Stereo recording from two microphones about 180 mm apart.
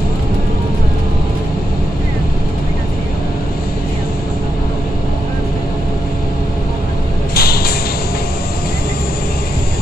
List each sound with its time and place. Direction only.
7.3 s music: 55° left (ahead or behind)